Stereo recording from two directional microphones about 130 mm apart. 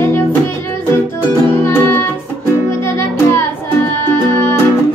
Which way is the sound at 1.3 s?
20° left (ahead or behind).